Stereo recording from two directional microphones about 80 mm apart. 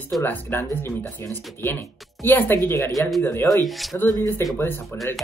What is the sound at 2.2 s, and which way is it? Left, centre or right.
Speech, left.